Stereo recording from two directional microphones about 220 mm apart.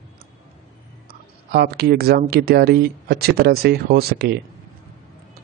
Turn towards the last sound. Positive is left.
turn(degrees=-45)  # may be behind; listen again after turning